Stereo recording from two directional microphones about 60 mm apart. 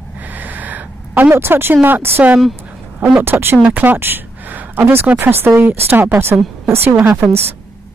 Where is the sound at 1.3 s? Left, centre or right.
Right.